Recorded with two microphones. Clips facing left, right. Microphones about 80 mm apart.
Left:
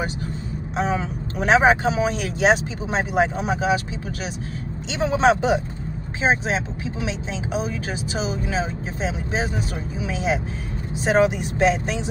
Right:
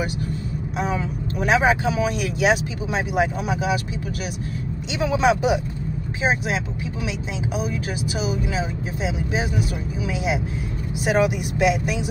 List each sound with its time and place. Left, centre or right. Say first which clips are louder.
0.7 s speech: left 2 dB; left
4.9 s speech: left 1 dB; left
8.2 s speech: left 1 dB; left